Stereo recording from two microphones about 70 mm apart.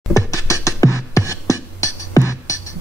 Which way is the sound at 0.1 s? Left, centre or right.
Left.